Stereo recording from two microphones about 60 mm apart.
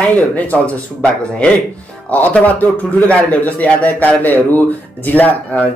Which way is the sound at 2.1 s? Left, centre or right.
Left.